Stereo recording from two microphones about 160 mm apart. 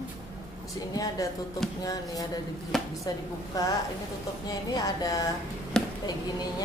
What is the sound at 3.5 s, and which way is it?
Speech, 20° left (ahead or behind).